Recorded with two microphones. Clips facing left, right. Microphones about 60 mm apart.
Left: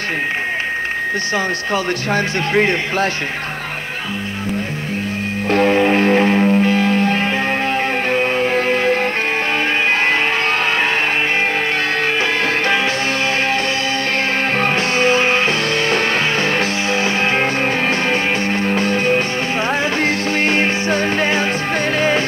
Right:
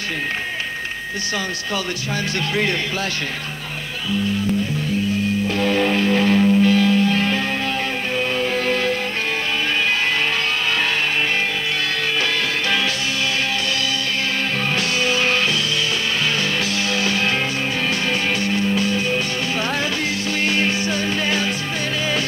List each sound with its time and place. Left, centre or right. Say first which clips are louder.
2.1 s speech: left 5 dB; left
5.5 s music: left 8 dB; left
14.6 s music: left 6 dB; left
18.4 s music: left 2 dB; left
20.4 s music: left 3 dB; left